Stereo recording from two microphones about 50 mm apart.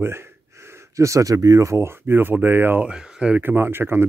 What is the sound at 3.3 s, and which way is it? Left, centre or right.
Speech, right.